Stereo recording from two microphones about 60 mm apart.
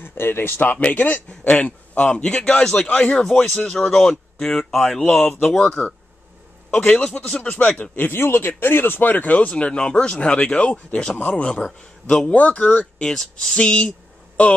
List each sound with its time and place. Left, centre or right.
0.0 s speech: left; by 3.3 s centre
3.3 s speech: centre
7.5 s speech: left
9.5 s speech: centre
13.0 s speech: centre
13.6 s a sound: centre